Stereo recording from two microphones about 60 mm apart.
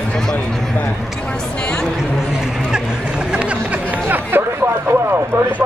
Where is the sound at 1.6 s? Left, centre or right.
Centre.